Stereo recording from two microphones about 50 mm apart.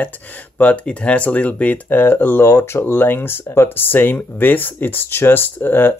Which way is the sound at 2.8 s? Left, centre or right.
Left.